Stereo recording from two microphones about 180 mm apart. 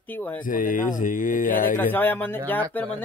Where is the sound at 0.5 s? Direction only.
50° left (ahead or behind).